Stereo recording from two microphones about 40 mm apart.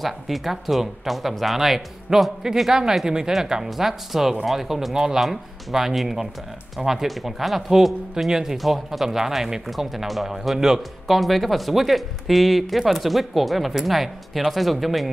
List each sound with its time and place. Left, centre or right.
0.0 s speech: centre
8.5 s speech: centre